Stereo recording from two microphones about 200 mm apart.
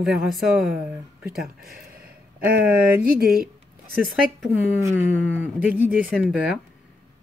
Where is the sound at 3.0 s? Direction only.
50° right (ahead or behind).